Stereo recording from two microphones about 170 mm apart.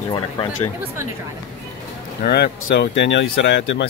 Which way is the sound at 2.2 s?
70° left (ahead or behind).